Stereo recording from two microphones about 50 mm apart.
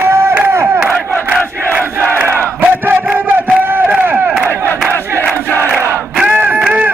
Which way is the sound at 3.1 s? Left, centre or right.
Right.